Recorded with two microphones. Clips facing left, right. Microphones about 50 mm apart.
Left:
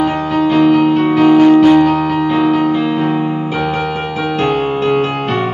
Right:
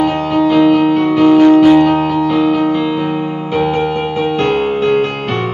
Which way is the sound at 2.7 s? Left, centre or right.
Centre.